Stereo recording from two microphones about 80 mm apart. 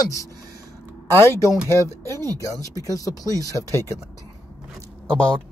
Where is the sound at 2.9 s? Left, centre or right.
Left.